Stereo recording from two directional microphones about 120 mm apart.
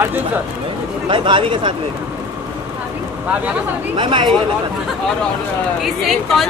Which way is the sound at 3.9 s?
40° right (ahead or behind).